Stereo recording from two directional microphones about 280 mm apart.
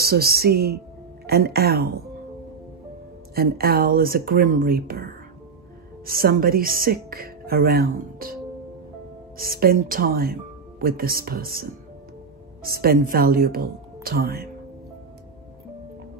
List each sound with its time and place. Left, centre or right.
0.0 s speech: right
3.3 s speech: right
9.4 s speech: right